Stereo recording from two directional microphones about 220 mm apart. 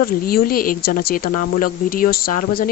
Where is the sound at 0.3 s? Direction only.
40° left (ahead or behind).